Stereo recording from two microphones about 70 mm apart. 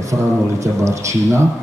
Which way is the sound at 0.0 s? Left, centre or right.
Right.